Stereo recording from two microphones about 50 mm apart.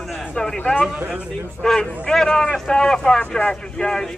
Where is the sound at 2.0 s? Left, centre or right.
Centre.